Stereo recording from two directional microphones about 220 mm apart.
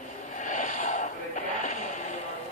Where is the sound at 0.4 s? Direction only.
35° left (ahead or behind).